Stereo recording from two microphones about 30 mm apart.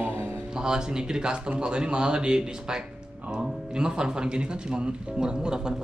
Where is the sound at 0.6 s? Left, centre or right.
Right.